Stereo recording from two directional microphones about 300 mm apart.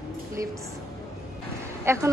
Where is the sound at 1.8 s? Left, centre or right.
Centre.